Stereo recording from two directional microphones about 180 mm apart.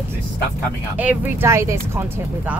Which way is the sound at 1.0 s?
10° right (ahead or behind).